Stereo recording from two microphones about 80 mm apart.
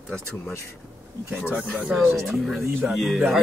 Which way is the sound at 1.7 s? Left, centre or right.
Centre.